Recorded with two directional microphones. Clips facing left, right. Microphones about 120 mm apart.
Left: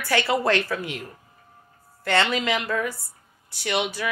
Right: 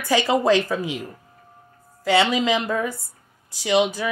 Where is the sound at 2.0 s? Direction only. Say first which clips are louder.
Right 4 dB; 10° right (ahead or behind).